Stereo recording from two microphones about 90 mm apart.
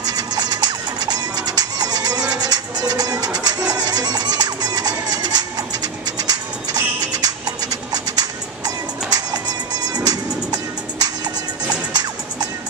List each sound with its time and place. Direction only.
0.0 s music: 45° right (ahead or behind)